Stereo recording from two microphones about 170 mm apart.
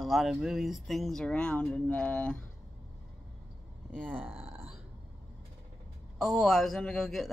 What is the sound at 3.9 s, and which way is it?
Speech, 10° right (ahead or behind).